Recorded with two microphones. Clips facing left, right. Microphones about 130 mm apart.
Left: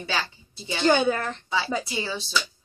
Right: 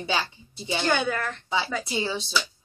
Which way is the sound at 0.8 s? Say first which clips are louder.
Left 5 dB; 20° left (ahead or behind).